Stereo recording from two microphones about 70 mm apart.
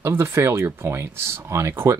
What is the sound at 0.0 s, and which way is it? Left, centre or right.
Speech, right.